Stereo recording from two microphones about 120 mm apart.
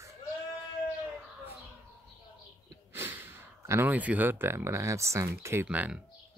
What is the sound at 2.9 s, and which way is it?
Speech, 15° right (ahead or behind).